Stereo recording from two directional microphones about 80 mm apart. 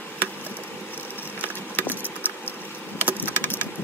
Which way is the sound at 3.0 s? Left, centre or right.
Right.